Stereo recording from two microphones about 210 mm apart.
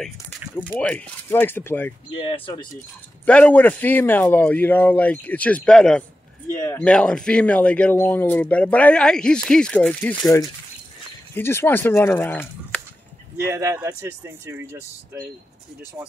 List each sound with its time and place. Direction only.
0.6 s speech: 5° left (ahead or behind)
2.1 s speech: 25° left (ahead or behind)
3.3 s speech: 5° left (ahead or behind)
13.4 s speech: 15° right (ahead or behind)